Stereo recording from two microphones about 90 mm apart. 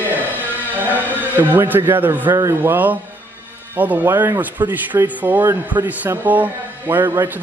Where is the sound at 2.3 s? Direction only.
35° right (ahead or behind).